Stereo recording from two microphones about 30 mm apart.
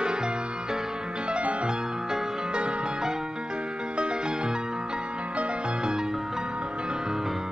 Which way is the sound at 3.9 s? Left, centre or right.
Right.